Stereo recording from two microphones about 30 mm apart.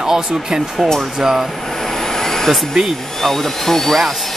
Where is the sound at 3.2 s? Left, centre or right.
Centre.